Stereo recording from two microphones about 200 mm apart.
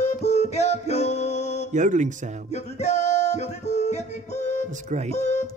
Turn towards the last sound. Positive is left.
turn(degrees=35)  # may be behind; listen again after turning